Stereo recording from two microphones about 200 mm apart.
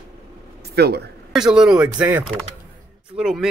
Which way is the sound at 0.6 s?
55° right (ahead or behind).